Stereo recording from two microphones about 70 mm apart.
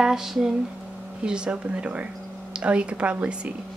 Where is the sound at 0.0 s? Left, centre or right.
Centre.